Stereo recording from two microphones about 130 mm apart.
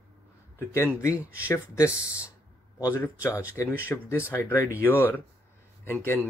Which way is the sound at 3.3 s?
15° right (ahead or behind).